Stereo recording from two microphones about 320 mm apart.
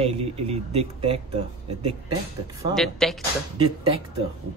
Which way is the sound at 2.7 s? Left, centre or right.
Centre.